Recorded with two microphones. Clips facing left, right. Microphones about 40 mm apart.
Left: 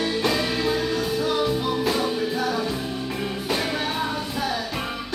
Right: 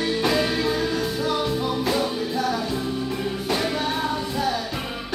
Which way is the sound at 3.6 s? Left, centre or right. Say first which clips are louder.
Even; centre.